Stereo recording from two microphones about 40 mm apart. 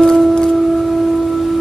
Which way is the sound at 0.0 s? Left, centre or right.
Centre.